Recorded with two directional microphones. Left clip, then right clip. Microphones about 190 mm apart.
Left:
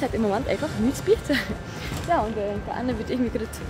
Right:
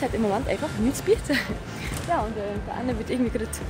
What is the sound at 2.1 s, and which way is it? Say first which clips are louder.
Speech: left 3 dB; centre (ahead or behind).